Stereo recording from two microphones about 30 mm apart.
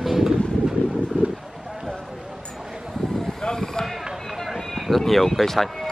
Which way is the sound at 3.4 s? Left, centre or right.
Centre.